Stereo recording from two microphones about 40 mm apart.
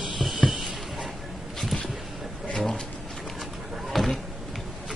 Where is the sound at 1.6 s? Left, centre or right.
Centre.